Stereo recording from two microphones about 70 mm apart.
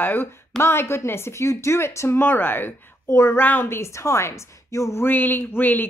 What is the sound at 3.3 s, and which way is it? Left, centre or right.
A woman's voice, left.